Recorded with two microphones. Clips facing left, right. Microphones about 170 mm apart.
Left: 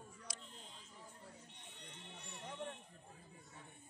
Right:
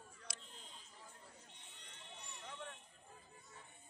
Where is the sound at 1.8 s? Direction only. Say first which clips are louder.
Left 2 dB; 65° left (ahead or behind).